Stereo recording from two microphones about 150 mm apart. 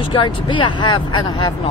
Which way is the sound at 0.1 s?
35° left (ahead or behind).